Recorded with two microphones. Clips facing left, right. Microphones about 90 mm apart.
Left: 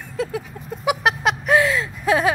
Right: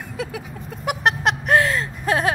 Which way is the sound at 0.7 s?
Centre (ahead or behind).